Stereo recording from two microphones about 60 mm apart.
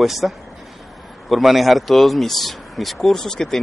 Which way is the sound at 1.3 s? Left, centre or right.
Centre.